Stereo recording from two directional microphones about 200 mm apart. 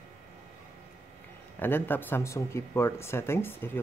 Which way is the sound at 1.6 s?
10° left (ahead or behind).